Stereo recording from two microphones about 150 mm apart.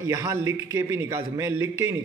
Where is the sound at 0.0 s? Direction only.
20° right (ahead or behind).